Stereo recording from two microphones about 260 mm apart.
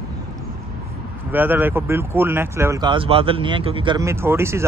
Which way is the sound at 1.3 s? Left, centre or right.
Centre.